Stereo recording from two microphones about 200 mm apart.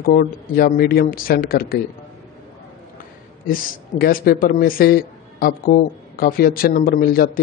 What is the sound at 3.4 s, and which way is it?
A man's voice, 45° left (ahead or behind).